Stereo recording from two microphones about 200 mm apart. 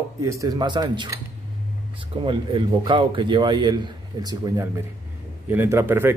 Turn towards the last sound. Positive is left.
turn(degrees=-10)  # may be behind; listen again after turning